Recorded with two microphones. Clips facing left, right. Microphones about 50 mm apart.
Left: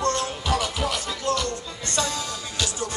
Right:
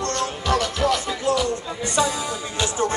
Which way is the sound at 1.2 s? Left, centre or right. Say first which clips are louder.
Right 4 dB; centre.